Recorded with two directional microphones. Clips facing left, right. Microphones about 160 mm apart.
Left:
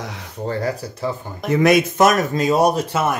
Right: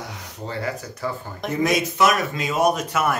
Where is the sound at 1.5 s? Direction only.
70° left (ahead or behind); by 3.2 s 30° left (ahead or behind).